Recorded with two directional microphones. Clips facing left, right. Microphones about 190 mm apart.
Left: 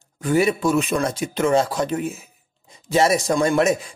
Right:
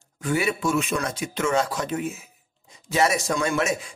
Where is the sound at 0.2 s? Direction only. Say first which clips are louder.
Left 6 dB; 40° left (ahead or behind).